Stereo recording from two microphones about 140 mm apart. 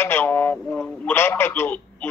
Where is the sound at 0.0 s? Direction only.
15° left (ahead or behind).